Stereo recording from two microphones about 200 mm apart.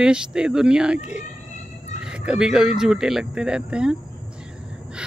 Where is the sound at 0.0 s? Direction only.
5° right (ahead or behind).